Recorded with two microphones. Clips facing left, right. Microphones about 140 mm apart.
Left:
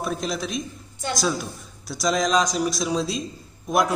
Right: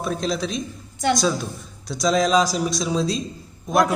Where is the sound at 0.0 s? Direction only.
Centre (ahead or behind).